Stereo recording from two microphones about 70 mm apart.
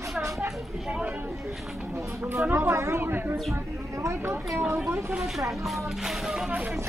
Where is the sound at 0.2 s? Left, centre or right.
Right.